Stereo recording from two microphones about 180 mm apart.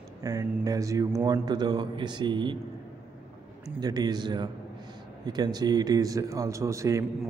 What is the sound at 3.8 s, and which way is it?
A man's voice, 20° right (ahead or behind).